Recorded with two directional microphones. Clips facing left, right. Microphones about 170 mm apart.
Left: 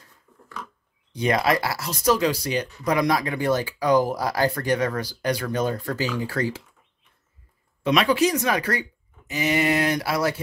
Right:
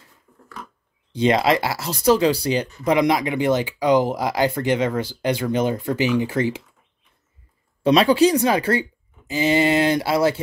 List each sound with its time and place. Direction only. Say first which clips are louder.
0.3 s a sound: right 1 dB; 15° right (ahead or behind)
1.1 s speech: right 4 dB; 25° right (ahead or behind)
7.8 s speech: right 5 dB; 30° right (ahead or behind)